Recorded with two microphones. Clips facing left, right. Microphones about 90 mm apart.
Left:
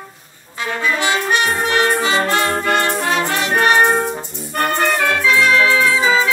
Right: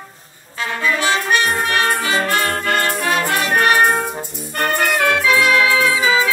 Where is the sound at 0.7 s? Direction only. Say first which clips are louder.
Even; 20° left (ahead or behind).